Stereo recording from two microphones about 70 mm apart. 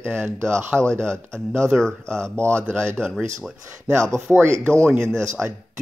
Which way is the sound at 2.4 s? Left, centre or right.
Right.